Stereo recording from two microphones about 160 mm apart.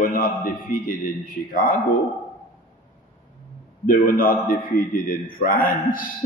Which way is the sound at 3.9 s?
60° left (ahead or behind).